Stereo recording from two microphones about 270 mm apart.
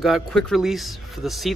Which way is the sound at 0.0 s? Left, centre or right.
Centre.